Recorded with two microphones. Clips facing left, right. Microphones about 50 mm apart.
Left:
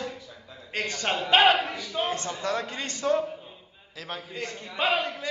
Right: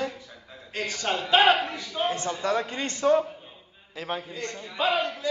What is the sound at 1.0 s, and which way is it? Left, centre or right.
Speech, centre.